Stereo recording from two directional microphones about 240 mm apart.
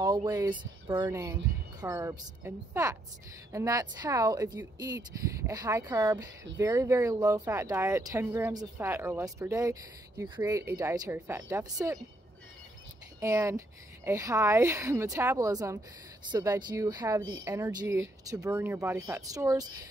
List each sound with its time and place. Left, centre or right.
0.0 s speech: centre
13.2 s speech: centre
17.2 s a woman's voice: right
17.5 s speech: centre